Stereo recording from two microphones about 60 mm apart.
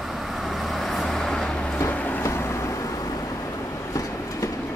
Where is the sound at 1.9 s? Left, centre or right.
Left.